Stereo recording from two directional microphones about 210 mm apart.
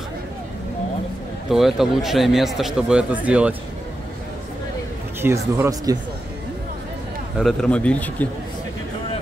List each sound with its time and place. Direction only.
1.5 s speech: centre (ahead or behind)
5.2 s speech: 15° right (ahead or behind)
7.3 s speech: centre (ahead or behind)